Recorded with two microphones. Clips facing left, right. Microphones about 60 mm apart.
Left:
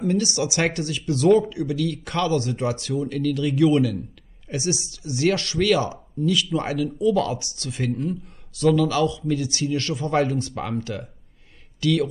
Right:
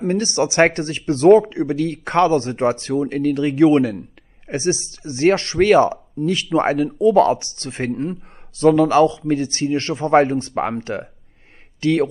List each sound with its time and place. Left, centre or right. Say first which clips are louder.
0.0 s speech: right 4 dB; right